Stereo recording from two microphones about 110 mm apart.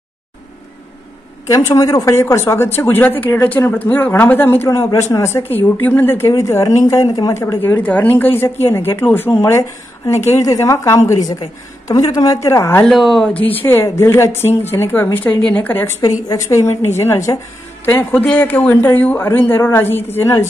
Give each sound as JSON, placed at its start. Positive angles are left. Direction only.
{"t": 1.5, "sound": "speech", "side_deg": 25}
{"t": 7.5, "sound": "a woman's voice", "side_deg": 15}
{"t": 12.8, "sound": "speech", "side_deg": 0}
{"t": 13.5, "sound": "speech", "side_deg": 20}
{"t": 16.0, "sound": "speech", "side_deg": 30}